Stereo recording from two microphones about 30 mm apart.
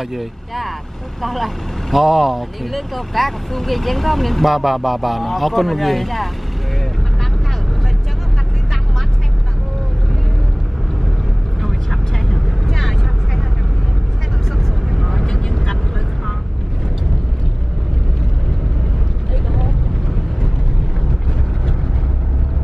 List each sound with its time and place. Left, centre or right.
0.1 s speech: centre
11.6 s vehicle: centre
14.6 s vehicle: centre
15.2 s vehicle: centre